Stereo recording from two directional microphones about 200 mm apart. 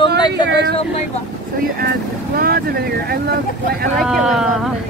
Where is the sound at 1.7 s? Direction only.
45° right (ahead or behind).